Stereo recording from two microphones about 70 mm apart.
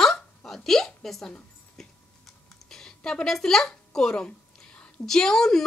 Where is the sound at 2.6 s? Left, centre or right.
Centre.